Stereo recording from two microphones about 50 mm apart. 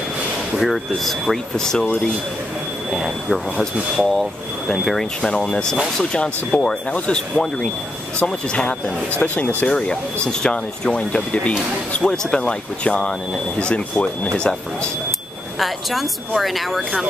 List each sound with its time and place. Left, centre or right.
0.6 s speech: centre
2.9 s speech: centre
3.9 s speech: centre; by 9.7 s left
9.7 s speech: centre
15.6 s speech: centre